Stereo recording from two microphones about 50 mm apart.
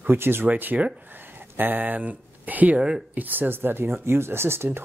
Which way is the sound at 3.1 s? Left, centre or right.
Right.